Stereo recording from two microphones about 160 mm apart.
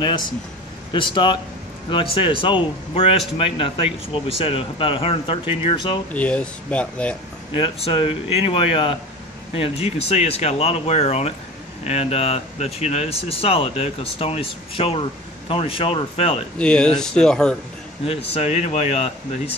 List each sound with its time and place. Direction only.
0.9 s speech: 30° left (ahead or behind)
6.1 s speech: 10° left (ahead or behind)
7.5 s speech: 35° left (ahead or behind)
16.5 s speech: 5° left (ahead or behind)
18.3 s speech: 45° left (ahead or behind)